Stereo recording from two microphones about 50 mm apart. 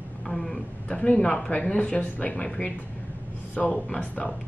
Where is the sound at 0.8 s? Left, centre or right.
Left.